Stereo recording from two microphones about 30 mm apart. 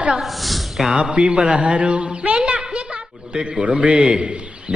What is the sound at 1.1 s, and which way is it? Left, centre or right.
A man's voice, right.